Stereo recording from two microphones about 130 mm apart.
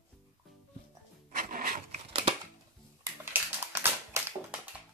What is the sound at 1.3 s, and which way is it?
Music, 90° right.